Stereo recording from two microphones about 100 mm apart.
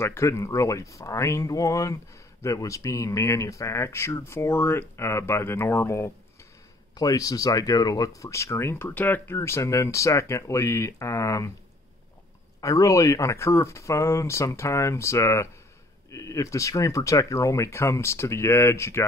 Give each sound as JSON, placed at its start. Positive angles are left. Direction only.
{"t": 0.0, "sound": "speech", "side_deg": 25}
{"t": 12.5, "sound": "speech", "side_deg": 35}